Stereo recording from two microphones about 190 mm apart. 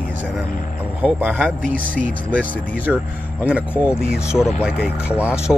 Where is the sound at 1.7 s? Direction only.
45° right (ahead or behind).